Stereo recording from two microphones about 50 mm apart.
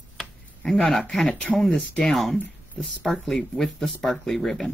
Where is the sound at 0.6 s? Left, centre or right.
Centre.